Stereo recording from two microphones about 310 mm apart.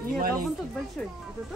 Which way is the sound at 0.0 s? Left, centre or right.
Right.